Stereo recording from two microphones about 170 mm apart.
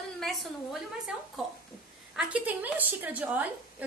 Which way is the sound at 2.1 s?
5° right (ahead or behind).